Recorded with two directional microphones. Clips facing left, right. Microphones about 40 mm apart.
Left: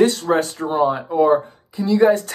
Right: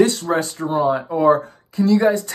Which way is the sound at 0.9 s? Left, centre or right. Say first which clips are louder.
Right 2 dB; centre.